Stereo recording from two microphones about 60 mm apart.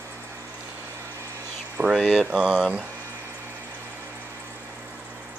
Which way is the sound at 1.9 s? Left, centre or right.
Centre.